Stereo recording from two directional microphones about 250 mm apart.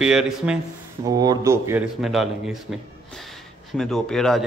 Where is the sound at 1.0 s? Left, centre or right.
Centre.